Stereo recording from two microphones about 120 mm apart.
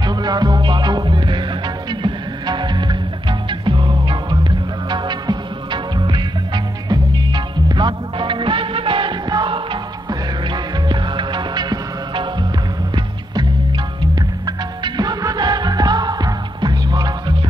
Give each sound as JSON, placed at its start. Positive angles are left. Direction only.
{"t": 0.0, "sound": "music", "side_deg": -35}